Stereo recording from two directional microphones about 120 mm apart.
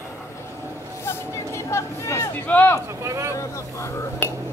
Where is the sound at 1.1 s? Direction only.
25° left (ahead or behind).